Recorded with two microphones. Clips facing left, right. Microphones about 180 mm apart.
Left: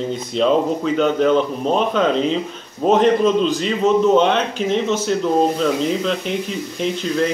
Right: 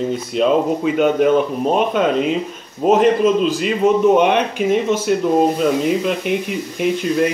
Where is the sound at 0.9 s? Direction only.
10° right (ahead or behind).